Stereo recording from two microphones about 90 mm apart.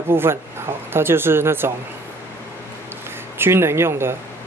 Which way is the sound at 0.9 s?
25° right (ahead or behind).